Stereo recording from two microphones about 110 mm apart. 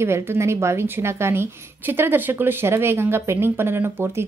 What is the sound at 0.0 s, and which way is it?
A woman's voice, 20° right (ahead or behind).